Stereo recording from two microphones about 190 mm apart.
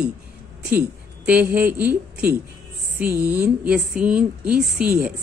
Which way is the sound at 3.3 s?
10° right (ahead or behind).